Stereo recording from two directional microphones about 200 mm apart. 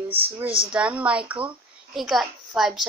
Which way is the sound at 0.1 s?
10° right (ahead or behind).